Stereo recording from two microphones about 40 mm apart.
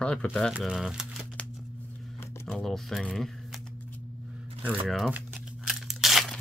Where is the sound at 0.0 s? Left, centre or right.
Left.